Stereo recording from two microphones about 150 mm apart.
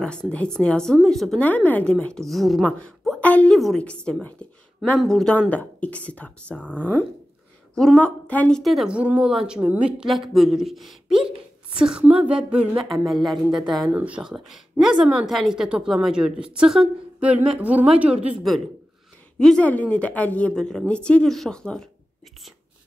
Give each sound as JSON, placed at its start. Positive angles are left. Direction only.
{"t": 0.0, "sound": "a woman's voice", "side_deg": 5}
{"t": 7.7, "sound": "a woman's voice", "side_deg": 5}
{"t": 11.1, "sound": "a sound", "side_deg": -35}
{"t": 11.8, "sound": "a woman's voice", "side_deg": -5}